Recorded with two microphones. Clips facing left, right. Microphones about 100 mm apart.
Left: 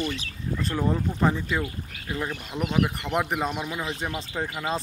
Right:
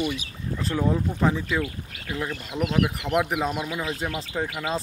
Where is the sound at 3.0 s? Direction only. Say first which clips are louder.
Right 2 dB; centre (ahead or behind).